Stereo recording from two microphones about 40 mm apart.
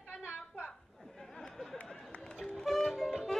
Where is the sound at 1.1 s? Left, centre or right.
Centre.